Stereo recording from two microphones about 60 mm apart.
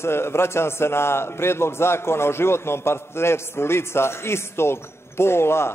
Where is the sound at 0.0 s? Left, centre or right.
Left.